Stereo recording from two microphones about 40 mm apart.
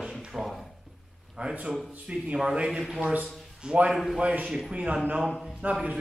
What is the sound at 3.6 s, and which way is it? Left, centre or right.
Speech, right.